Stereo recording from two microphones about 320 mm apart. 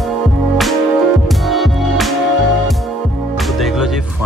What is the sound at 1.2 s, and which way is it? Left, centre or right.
Music, centre.